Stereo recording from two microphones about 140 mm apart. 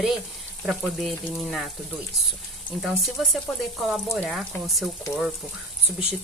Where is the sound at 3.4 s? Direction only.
5° right (ahead or behind).